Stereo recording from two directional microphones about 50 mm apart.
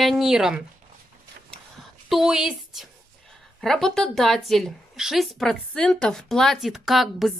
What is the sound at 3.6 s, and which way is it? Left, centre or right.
A woman's voice, centre.